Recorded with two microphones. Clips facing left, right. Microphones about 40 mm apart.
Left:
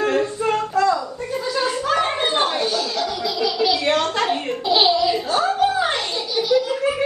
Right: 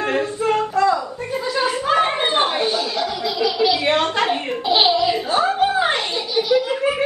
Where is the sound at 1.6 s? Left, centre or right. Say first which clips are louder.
Right 3 dB; centre.